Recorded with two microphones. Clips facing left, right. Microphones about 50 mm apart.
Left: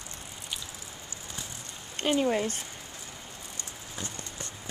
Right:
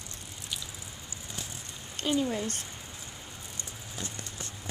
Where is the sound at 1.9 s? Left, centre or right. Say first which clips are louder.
Left 3 dB; left.